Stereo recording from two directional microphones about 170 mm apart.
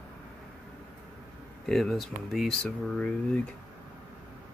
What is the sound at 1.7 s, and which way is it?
Speech, centre (ahead or behind).